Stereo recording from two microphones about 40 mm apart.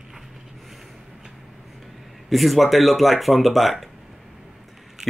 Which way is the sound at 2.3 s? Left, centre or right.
Centre.